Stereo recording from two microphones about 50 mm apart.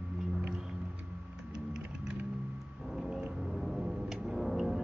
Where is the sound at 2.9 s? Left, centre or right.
Centre.